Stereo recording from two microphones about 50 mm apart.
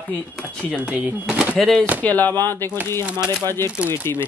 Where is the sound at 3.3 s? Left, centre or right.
Left.